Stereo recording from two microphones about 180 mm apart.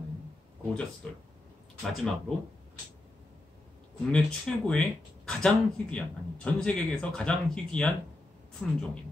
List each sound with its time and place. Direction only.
1.8 s speech: 5° left (ahead or behind)
4.1 s speech: 5° left (ahead or behind)